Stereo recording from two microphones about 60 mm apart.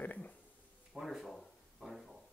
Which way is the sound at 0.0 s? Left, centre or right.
Left.